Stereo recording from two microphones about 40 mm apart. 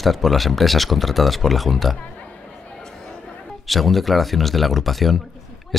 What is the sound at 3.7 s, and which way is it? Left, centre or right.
Speech, centre.